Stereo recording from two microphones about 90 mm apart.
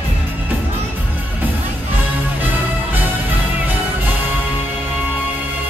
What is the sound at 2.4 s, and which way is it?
Music, 20° right (ahead or behind).